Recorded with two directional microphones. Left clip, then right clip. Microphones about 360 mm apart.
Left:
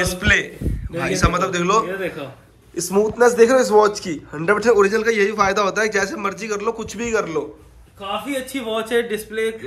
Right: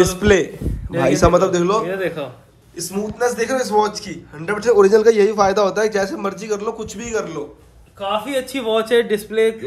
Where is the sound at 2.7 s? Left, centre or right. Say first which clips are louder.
Left 7 dB; centre.